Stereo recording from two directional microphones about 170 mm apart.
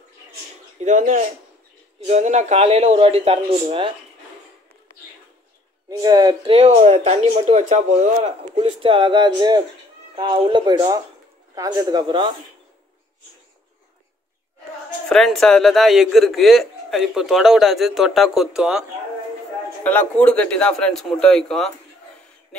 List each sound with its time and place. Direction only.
0.8 s speech: 50° right (ahead or behind)
5.9 s speech: 25° right (ahead or behind)
6.5 s speech: 35° right (ahead or behind)
15.0 s speech: centre (ahead or behind)
19.8 s speech: 10° left (ahead or behind)